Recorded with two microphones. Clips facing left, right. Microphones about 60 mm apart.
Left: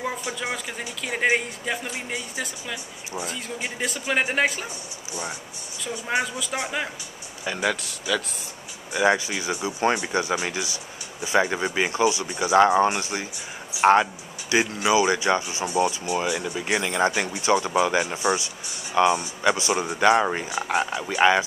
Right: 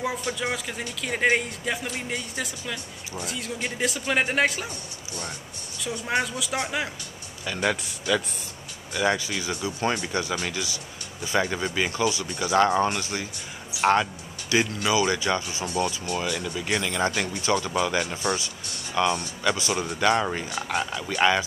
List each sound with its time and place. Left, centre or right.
0.0 s speech: centre
5.9 s speech: centre
8.1 s speech: centre
8.9 s speech: centre
15.6 s speech: centre
20.8 s speech: left